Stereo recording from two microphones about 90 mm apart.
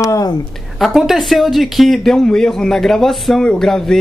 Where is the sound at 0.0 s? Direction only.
35° left (ahead or behind).